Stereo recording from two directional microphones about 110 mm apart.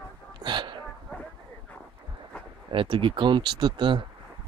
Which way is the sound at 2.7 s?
50° right (ahead or behind).